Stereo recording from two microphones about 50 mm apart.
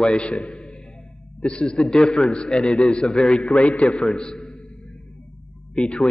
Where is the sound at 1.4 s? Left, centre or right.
Centre.